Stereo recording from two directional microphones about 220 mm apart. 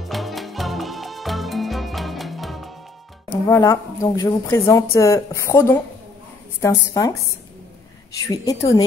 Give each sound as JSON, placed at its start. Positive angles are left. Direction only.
{"t": 0.0, "sound": "music", "side_deg": 0}
{"t": 3.4, "sound": "speech", "side_deg": 15}
{"t": 8.2, "sound": "speech", "side_deg": 15}